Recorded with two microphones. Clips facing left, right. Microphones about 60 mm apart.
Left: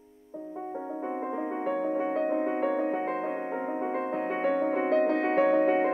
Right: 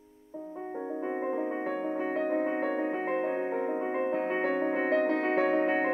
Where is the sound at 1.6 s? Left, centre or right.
Right.